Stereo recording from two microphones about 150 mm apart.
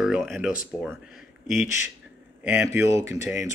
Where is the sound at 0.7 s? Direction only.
Centre (ahead or behind).